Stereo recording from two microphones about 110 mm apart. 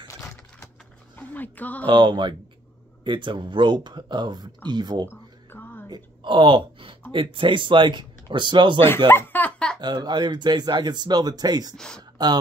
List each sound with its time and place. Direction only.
0.1 s keys jangling: 25° left (ahead or behind)
1.1 s speech: 15° left (ahead or behind)
1.9 s speech: 45° right (ahead or behind)
5.0 s a sound: 20° left (ahead or behind)
5.9 s speech: 45° right (ahead or behind)
8.8 s chuckle: 20° left (ahead or behind)
9.8 s speech: 40° right (ahead or behind)
11.7 s speech: 5° left (ahead or behind)